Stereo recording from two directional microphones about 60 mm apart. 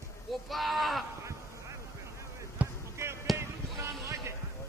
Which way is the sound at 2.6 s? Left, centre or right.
Right.